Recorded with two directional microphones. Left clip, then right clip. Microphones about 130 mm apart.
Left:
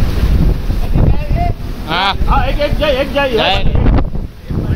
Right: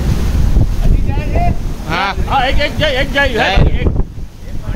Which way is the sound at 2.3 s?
40° right (ahead or behind).